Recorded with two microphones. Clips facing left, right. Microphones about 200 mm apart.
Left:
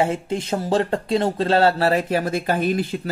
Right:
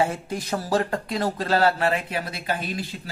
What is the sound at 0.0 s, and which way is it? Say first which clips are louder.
Speech: left 3 dB; 25° left (ahead or behind).